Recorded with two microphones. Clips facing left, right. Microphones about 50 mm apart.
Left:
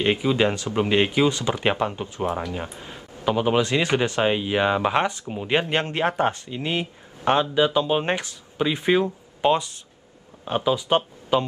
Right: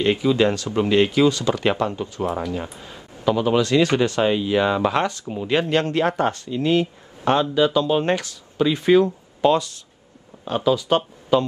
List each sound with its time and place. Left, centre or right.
0.0 s speech: left
2.2 s speech: centre
2.5 s speech: left